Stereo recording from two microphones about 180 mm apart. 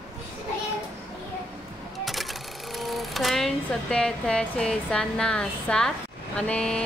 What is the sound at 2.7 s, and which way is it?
Speech, centre (ahead or behind).